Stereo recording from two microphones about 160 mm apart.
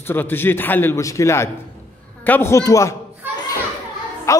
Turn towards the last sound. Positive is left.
turn(degrees=20)  # may be behind; listen again after turning